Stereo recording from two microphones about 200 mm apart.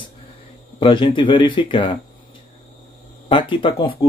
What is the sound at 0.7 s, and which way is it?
Speech, 25° left (ahead or behind).